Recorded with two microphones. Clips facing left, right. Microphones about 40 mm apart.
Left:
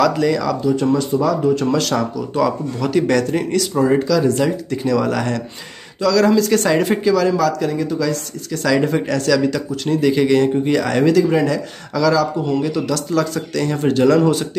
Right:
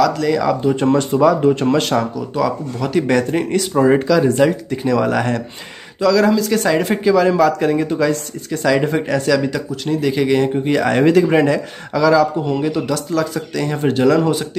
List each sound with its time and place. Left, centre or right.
0.0 s speech: centre
0.3 s speech: centre
0.6 s speech: right
2.3 s speech: centre
7.2 s speech: right
8.5 s speech: centre
9.7 s speech: centre